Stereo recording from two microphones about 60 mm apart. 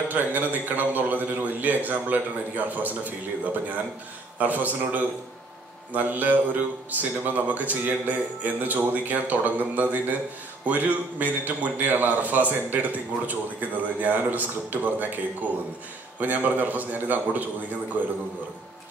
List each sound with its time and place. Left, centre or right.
0.1 s a man's voice: right
4.4 s a man's voice: right
16.2 s a man's voice: right